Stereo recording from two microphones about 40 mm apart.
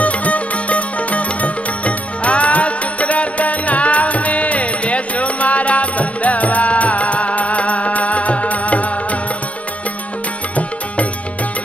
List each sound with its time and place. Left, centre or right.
0.0 s music: left